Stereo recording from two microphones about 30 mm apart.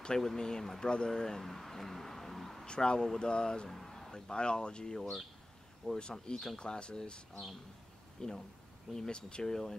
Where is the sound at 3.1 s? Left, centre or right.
Left.